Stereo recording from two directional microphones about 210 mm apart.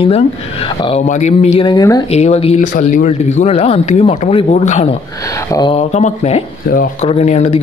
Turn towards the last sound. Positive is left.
turn(degrees=30)  # may be behind; listen again after turning